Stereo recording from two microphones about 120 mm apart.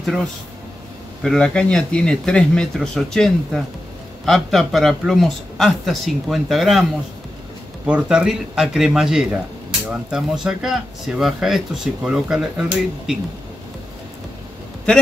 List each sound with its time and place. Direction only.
0.0 s speech: centre (ahead or behind)